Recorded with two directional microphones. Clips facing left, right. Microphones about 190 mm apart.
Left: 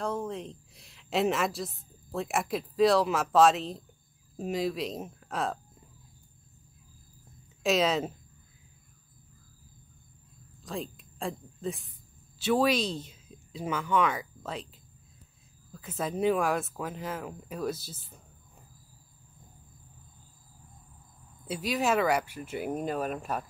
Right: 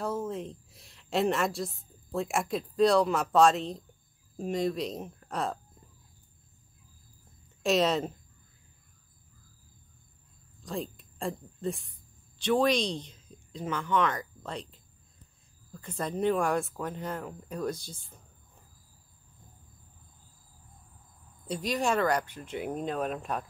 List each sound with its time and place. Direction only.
0.0 s a woman's voice: 5° right (ahead or behind)
7.6 s speech: centre (ahead or behind)
10.6 s speech: centre (ahead or behind)
21.5 s speech: 5° left (ahead or behind)